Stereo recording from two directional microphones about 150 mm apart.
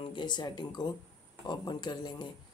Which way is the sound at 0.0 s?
30° left (ahead or behind).